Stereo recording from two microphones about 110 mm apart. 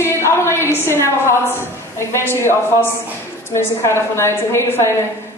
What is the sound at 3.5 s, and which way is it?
A woman's voice, 25° left (ahead or behind).